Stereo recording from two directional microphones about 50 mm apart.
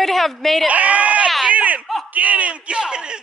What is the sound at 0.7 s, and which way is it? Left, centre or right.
Speech, right.